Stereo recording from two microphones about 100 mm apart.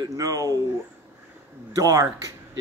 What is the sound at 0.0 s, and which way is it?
Speech, 35° right (ahead or behind).